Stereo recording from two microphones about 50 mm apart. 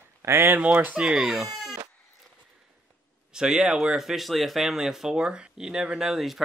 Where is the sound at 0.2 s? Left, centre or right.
Right.